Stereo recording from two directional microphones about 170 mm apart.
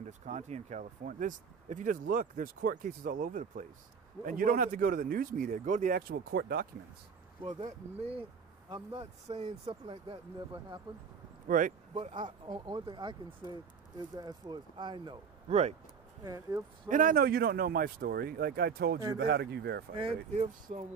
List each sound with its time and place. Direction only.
0.0 s speech: 45° right (ahead or behind); by 6.7 s 65° right (ahead or behind)
8.2 s speech: 25° right (ahead or behind)
11.4 s speech: 50° right (ahead or behind)
11.9 s speech: 40° right (ahead or behind)
12.3 s speech: 25° right (ahead or behind)
14.1 s speech: 25° right (ahead or behind)
15.5 s speech: 40° right (ahead or behind)
16.3 s speech: 20° right (ahead or behind)
16.9 s speech: 55° right (ahead or behind); by 19.8 s 75° right (ahead or behind)
20.0 s speech: 35° right (ahead or behind)